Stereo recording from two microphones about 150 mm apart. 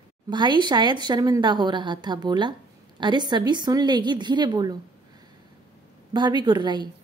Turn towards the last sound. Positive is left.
turn(degrees=-30)  # may be behind; listen again after turning